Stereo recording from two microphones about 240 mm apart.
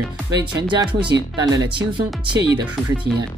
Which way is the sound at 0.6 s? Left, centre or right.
Centre.